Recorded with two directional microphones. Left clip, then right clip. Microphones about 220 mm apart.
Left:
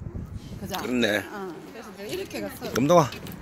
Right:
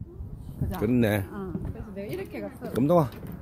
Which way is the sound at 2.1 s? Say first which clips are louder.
Left 4 dB; 40° left (ahead or behind).